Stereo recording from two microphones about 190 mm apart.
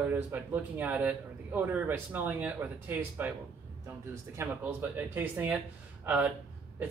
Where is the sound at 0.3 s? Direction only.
10° right (ahead or behind).